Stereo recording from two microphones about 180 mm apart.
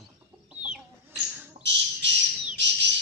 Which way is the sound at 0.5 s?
5° right (ahead or behind).